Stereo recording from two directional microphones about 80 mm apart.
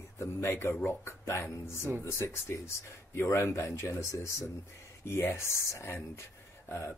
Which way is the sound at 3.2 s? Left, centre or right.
Left.